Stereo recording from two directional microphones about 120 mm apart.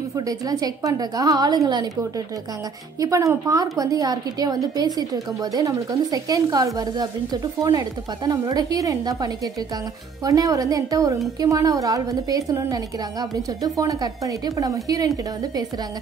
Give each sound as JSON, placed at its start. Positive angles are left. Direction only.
{"t": 0.3, "sound": "a woman's voice", "side_deg": -30}
{"t": 3.0, "sound": "a woman's voice", "side_deg": -25}
{"t": 8.3, "sound": "a woman's voice", "side_deg": -35}